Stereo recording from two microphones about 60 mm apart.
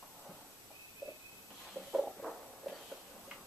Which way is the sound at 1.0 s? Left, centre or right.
Right.